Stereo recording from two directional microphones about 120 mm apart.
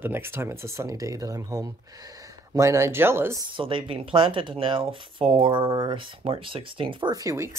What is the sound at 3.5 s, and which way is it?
Speech, 45° right (ahead or behind).